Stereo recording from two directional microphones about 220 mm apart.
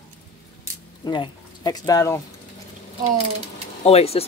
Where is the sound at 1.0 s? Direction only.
20° left (ahead or behind).